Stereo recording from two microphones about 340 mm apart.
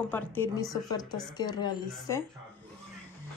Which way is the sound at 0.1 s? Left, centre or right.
Centre.